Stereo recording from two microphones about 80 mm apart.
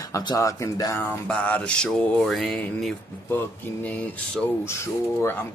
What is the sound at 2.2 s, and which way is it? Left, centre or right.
Mantra, centre.